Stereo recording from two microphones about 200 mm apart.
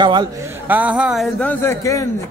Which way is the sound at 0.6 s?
5° right (ahead or behind).